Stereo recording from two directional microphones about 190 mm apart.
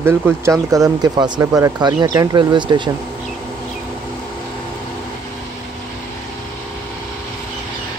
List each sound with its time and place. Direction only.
0.0 s speech: 15° right (ahead or behind)